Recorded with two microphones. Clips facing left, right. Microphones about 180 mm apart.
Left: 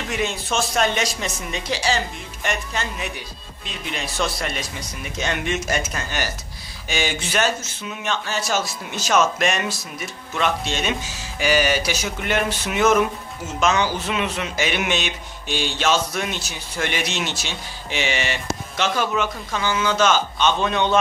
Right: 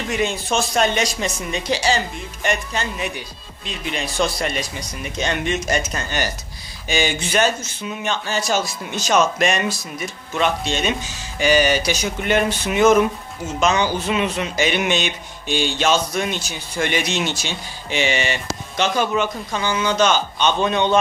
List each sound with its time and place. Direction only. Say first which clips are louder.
0.1 s speech: right 3 dB; centre (ahead or behind)